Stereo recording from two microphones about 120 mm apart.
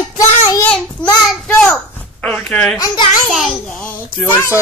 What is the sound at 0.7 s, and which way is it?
A child's voice, 10° left (ahead or behind).